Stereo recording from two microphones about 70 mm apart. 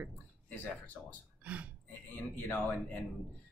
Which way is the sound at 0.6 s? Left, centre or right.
Left.